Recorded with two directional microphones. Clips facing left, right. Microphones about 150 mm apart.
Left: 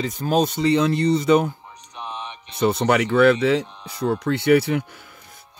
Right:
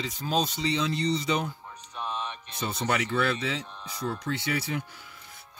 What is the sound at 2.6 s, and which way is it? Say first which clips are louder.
Speech: left 10 dB; 65° left (ahead or behind).